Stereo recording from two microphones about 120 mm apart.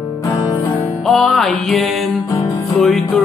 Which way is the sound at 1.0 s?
5° left (ahead or behind).